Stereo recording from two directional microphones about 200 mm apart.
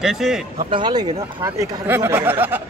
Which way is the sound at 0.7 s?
20° right (ahead or behind).